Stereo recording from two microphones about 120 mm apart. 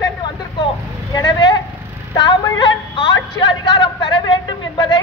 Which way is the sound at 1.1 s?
40° left (ahead or behind).